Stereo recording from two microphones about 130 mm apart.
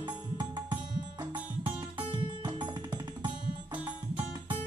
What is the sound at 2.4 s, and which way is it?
Music, 35° right (ahead or behind).